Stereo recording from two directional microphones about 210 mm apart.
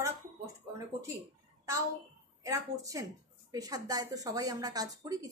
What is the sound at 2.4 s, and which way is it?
Speech, 15° right (ahead or behind).